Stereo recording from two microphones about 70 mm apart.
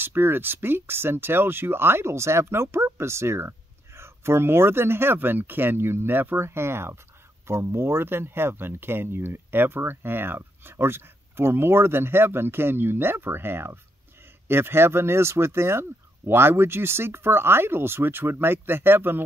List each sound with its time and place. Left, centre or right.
0.0 s speech: right